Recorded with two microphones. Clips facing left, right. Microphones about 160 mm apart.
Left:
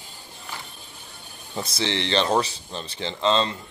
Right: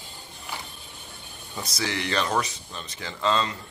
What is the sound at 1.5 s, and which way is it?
Speech, 30° left (ahead or behind).